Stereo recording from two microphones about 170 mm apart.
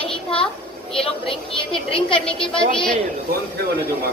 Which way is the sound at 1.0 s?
30° left (ahead or behind).